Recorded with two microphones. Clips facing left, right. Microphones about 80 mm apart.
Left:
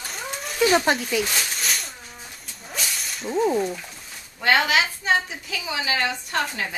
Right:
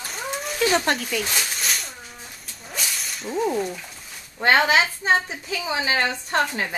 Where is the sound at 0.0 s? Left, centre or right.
Centre.